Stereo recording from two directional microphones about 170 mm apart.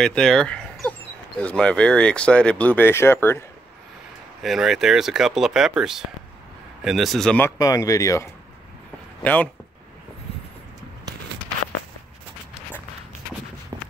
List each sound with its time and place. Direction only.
0.0 s speech: 5° left (ahead or behind)
4.4 s speech: centre (ahead or behind)
7.5 s speech: 20° left (ahead or behind)
9.2 s speech: 10° left (ahead or behind)